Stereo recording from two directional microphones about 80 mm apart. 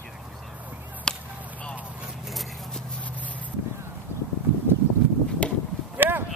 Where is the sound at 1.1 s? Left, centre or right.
Centre.